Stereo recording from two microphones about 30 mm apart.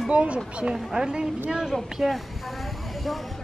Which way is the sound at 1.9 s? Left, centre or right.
Centre.